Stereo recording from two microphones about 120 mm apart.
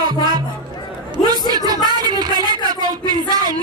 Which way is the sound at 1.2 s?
35° right (ahead or behind).